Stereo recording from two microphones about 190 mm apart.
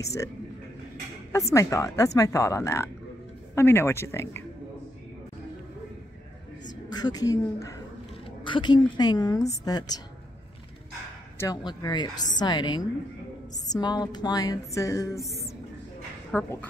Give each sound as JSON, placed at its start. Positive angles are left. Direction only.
{"t": 0.0, "sound": "a woman's voice", "side_deg": 15}
{"t": 1.5, "sound": "a woman's voice", "side_deg": 15}
{"t": 7.0, "sound": "a woman's voice", "side_deg": 20}
{"t": 11.3, "sound": "a woman's voice", "side_deg": 20}
{"t": 16.3, "sound": "a woman's voice", "side_deg": 10}